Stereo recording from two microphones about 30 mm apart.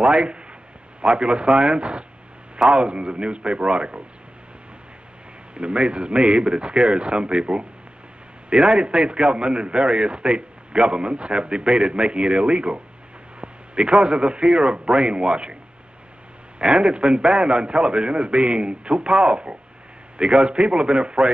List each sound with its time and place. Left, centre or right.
0.0 s a man's voice: right
5.5 s a man's voice: right
13.4 s a sound: right
14.0 s a man's voice: right
16.5 s a man's voice: right